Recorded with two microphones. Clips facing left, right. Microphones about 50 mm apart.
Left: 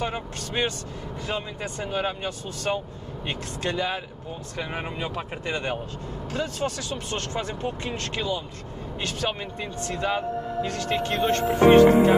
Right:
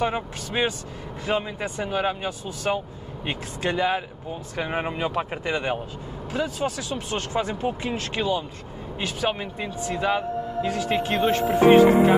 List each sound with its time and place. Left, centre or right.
0.0 s speech: centre